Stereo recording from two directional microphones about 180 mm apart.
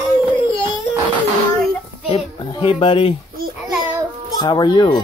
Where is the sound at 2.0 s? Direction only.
30° left (ahead or behind).